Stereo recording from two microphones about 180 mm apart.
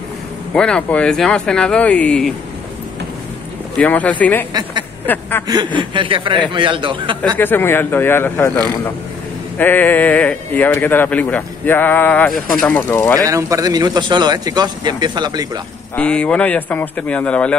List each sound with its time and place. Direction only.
0.5 s speech: 5° left (ahead or behind)
3.7 s speech: 10° left (ahead or behind)
5.8 s a man's voice: 30° right (ahead or behind)
7.3 s speech: 10° left (ahead or behind)
13.2 s a man's voice: 15° right (ahead or behind)
16.0 s speech: 5° left (ahead or behind)